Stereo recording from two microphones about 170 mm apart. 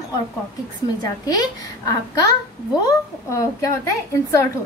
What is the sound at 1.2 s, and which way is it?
A woman's voice, 20° left (ahead or behind).